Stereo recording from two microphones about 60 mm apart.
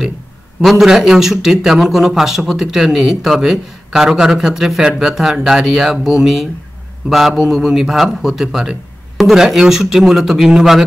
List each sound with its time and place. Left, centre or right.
0.6 s a man's voice: centre